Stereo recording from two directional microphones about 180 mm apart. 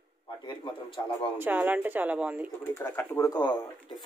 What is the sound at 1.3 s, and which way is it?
Speech, 10° right (ahead or behind).